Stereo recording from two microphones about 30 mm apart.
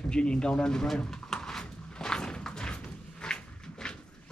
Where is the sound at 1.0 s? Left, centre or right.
Left.